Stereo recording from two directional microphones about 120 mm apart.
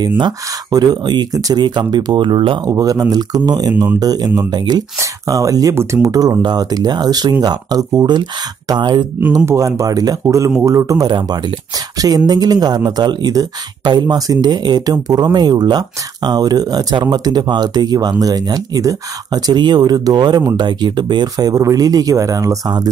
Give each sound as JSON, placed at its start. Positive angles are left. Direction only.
{"t": 0.2, "sound": "speech", "side_deg": -35}
{"t": 2.6, "sound": "speech", "side_deg": -30}
{"t": 9.5, "sound": "speech", "side_deg": -25}
{"t": 11.1, "sound": "speech", "side_deg": -40}